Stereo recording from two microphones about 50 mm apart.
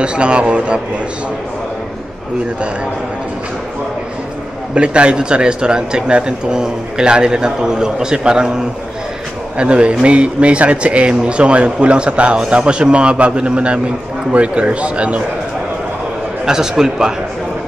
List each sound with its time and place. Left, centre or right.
0.0 s speech: right
4.7 s speech: right
9.6 s speech: right
16.4 s speech: centre